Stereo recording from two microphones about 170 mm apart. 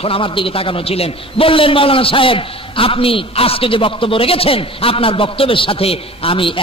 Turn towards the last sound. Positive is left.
turn(degrees=30)  # may be behind; listen again after turning